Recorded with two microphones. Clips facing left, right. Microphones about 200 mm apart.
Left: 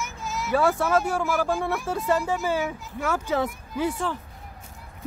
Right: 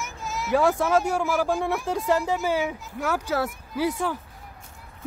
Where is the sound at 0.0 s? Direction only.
Centre (ahead or behind).